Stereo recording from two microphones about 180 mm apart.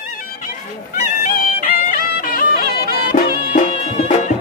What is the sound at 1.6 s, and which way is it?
Music, 50° left (ahead or behind).